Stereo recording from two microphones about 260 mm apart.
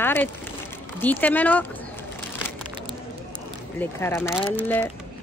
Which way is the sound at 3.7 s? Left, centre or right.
Centre.